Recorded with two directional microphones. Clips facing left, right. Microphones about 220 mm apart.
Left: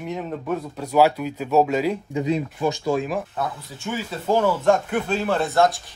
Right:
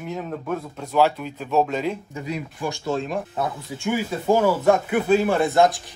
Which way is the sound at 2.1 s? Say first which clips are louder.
Left 7 dB; 20° left (ahead or behind).